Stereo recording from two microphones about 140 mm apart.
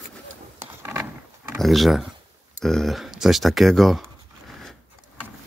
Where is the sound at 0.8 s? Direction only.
15° right (ahead or behind).